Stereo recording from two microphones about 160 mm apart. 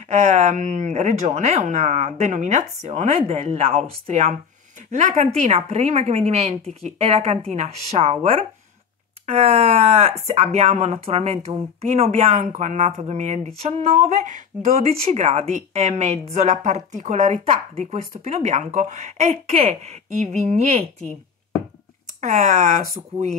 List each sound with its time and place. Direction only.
0.1 s speech: 45° right (ahead or behind)
22.2 s speech: 45° right (ahead or behind)